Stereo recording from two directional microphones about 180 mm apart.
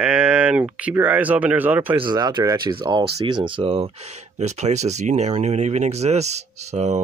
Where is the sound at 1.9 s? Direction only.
25° right (ahead or behind).